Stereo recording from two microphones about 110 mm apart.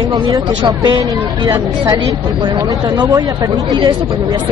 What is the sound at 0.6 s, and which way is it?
Speech, 40° right (ahead or behind).